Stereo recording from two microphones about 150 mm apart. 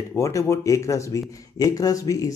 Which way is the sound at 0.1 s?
20° left (ahead or behind).